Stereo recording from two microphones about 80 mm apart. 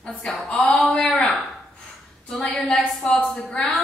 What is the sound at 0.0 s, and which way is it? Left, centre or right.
Speech, centre.